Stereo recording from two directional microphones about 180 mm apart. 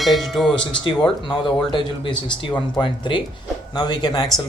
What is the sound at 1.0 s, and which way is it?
Speech, 25° left (ahead or behind).